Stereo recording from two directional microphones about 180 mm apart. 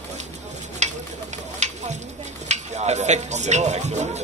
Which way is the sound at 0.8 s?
40° right (ahead or behind).